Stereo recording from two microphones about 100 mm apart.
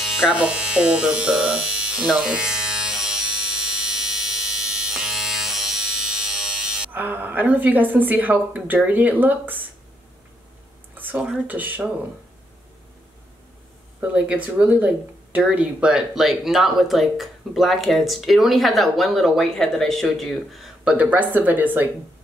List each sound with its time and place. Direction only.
0.0 s speech: 5° right (ahead or behind)
3.8 s electric shaver: 5° right (ahead or behind)
6.9 s a woman's voice: 15° right (ahead or behind)
11.0 s a sound: 20° right (ahead or behind)
11.4 s a woman's voice: 15° right (ahead or behind)
14.0 s a woman's voice: 15° right (ahead or behind)